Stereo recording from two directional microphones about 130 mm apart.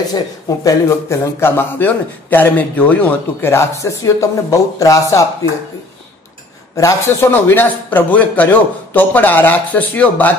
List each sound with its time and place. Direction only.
0.1 s a man's voice: 25° left (ahead or behind)
6.8 s a man's voice: 20° left (ahead or behind)